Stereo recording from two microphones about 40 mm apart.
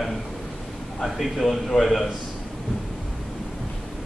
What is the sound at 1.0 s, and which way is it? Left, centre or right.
A man's voice, centre.